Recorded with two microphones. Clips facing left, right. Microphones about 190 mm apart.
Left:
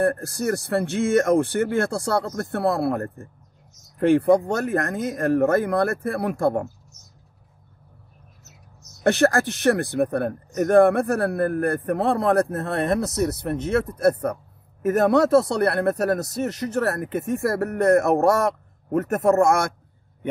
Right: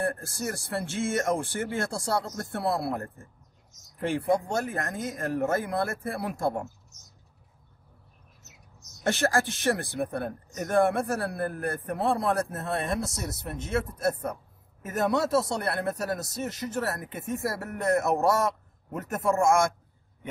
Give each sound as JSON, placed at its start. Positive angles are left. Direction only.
{"t": 0.0, "sound": "speech", "side_deg": 65}
{"t": 9.0, "sound": "speech", "side_deg": 65}